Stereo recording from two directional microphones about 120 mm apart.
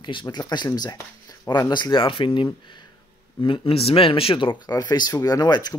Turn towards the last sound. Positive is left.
turn(degrees=35)  # may be behind; listen again after turning